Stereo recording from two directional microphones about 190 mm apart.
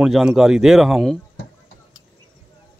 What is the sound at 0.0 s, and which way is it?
Speech, 5° right (ahead or behind).